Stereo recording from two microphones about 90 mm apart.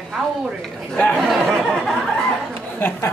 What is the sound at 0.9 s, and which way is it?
Speech, 15° left (ahead or behind).